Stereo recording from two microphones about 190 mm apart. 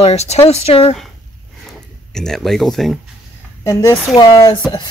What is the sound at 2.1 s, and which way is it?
Speech, centre (ahead or behind).